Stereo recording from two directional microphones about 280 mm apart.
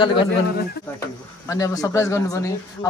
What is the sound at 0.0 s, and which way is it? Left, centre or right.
Speech, centre.